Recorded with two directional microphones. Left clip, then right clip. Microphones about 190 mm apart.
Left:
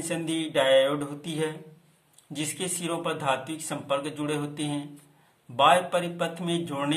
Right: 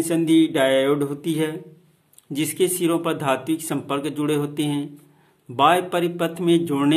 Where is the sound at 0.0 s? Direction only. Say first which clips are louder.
Right 12 dB; 50° right (ahead or behind).